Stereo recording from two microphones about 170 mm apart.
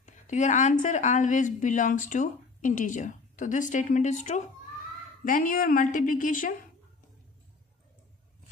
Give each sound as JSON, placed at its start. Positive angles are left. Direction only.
{"t": 0.0, "sound": "a woman's voice", "side_deg": 45}